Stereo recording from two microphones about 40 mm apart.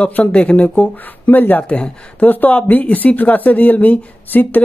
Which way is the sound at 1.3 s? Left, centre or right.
Left.